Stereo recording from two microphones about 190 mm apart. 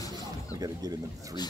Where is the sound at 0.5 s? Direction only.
20° right (ahead or behind).